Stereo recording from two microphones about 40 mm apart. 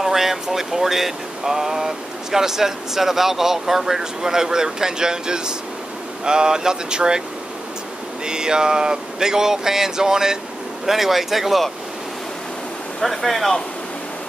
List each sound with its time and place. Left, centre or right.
0.0 s speech: centre
8.3 s speech: centre
13.0 s speech: centre